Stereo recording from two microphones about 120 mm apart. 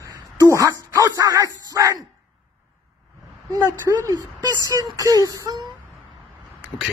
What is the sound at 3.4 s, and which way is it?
Speech, 25° right (ahead or behind).